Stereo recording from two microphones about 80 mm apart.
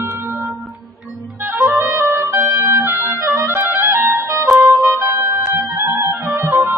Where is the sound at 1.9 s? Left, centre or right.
Right.